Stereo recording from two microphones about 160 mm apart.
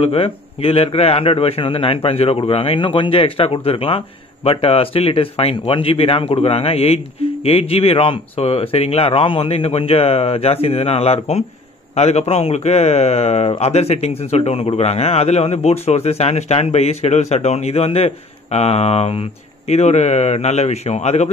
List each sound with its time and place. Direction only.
0.0 s a man's voice: 35° left (ahead or behind)